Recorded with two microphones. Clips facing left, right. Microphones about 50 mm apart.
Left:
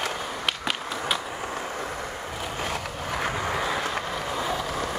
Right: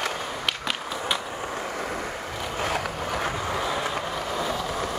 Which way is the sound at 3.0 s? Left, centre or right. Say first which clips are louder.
Even; centre.